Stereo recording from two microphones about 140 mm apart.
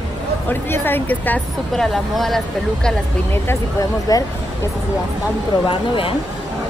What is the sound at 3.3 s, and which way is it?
Speech, 20° left (ahead or behind).